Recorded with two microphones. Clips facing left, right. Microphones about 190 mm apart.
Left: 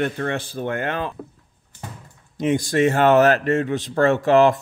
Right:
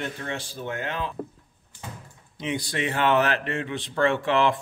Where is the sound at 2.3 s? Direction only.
45° left (ahead or behind).